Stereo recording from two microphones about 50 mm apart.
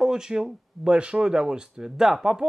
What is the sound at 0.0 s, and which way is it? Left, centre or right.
Speech, centre.